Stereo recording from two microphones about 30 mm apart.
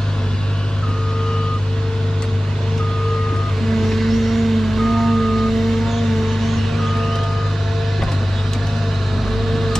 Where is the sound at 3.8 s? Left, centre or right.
Centre.